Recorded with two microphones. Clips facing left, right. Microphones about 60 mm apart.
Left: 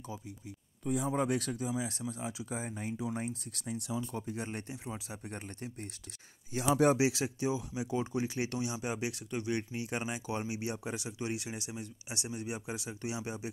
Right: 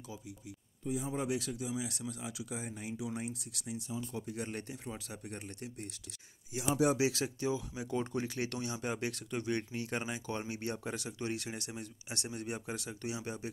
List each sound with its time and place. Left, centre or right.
0.8 s speech: left
4.1 s speech: left
5.3 s speech: left
6.5 s speech: left
7.0 s speech: left